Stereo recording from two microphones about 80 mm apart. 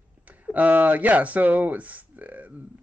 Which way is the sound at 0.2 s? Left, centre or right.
Centre.